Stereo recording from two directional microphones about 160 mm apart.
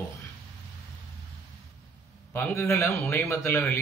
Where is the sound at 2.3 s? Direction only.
15° left (ahead or behind).